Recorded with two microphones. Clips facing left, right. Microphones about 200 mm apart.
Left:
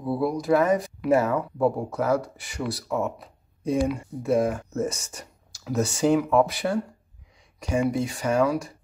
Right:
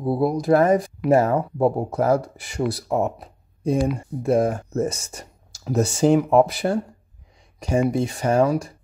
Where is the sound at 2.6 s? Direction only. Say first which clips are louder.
Right 5 dB; 35° right (ahead or behind).